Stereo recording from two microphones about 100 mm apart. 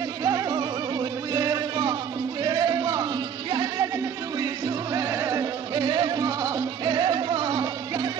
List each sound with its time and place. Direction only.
0.2 s music: 40° right (ahead or behind)
4.9 s music: 30° right (ahead or behind)
5.8 s music: 50° right (ahead or behind)